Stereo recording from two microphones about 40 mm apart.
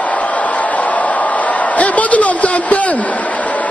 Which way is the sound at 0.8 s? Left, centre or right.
Left.